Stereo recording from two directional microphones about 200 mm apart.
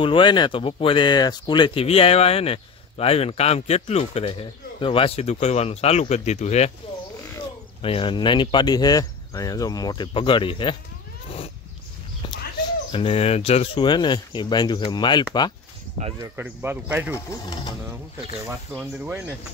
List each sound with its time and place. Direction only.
0.0 s speech: 25° left (ahead or behind)
7.8 s speech: 25° left (ahead or behind)
12.9 s speech: 30° left (ahead or behind)
16.2 s speech: 10° right (ahead or behind)
17.1 s speech: 20° left (ahead or behind)
18.7 s speech: 10° right (ahead or behind)